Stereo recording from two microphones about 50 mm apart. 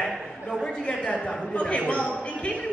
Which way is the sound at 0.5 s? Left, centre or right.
Centre.